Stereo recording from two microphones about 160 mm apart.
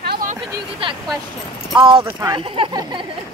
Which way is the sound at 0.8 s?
35° right (ahead or behind).